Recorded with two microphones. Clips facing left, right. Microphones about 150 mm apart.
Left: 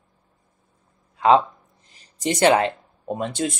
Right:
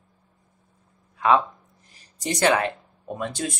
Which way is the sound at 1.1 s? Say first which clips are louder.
Left 4 dB; 25° left (ahead or behind).